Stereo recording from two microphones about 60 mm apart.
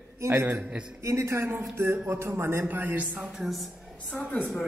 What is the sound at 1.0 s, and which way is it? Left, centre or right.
A woman's voice, right.